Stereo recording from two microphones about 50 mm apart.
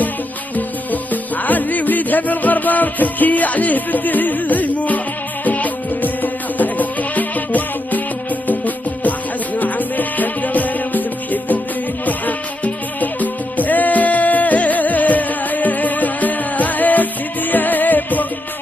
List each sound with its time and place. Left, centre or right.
1.1 s music: left